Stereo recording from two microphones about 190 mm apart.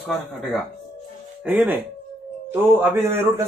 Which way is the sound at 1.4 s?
10° right (ahead or behind).